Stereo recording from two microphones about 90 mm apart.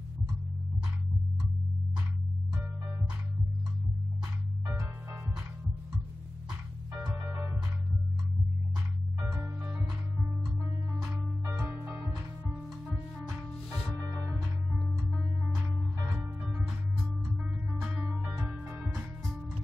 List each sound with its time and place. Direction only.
7.1 s music: 25° right (ahead or behind)
9.3 s music: 15° right (ahead or behind)
11.5 s music: 25° right (ahead or behind)
13.9 s music: 35° right (ahead or behind)
16.0 s music: 30° right (ahead or behind)
16.4 s music: 5° right (ahead or behind)